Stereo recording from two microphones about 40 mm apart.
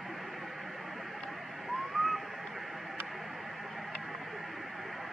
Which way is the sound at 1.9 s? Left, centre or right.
Centre.